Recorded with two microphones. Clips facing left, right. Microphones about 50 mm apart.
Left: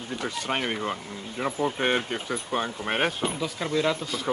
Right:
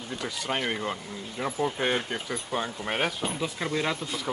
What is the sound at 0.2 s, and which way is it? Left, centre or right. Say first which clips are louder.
Speech: left 1 dB; left.